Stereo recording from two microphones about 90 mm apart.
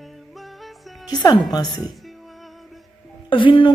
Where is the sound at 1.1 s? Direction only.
50° left (ahead or behind).